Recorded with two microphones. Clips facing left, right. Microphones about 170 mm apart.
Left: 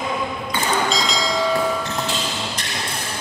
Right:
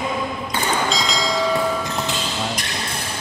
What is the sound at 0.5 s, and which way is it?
Train, centre (ahead or behind).